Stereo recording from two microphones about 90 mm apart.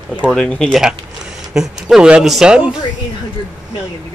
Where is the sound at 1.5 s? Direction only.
5° right (ahead or behind).